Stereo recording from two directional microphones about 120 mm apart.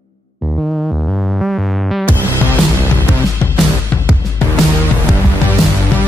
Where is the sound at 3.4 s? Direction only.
15° left (ahead or behind).